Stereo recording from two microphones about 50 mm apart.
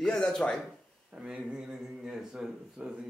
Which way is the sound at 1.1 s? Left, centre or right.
Right.